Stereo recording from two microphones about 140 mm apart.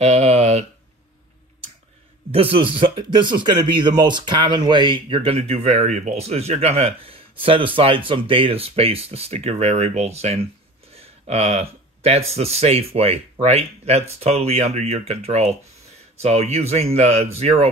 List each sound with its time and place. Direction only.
0.0 s speech: 50° right (ahead or behind)
2.3 s speech: 40° right (ahead or behind)